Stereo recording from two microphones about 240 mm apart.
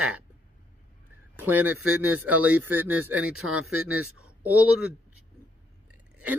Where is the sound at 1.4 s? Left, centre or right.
Centre.